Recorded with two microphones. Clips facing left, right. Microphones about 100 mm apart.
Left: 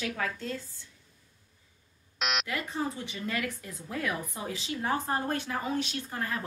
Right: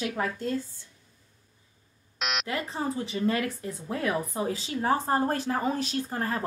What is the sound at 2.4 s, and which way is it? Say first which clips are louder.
Speech: right 2 dB; 30° right (ahead or behind).